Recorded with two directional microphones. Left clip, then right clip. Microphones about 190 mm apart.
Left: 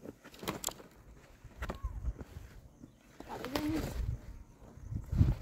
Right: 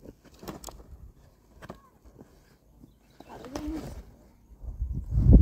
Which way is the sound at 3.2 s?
45° left (ahead or behind).